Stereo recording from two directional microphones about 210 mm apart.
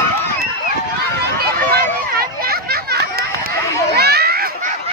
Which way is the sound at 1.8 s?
45° right (ahead or behind).